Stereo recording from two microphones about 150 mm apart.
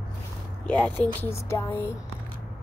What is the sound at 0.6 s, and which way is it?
Speech, 10° left (ahead or behind).